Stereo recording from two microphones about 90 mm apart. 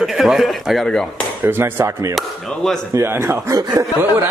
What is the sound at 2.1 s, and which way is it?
Speech, 5° left (ahead or behind).